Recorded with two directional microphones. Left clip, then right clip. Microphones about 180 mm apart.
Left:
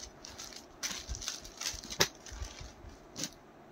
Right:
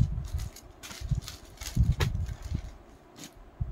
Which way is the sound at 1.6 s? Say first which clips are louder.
Left 4 dB; 5° left (ahead or behind).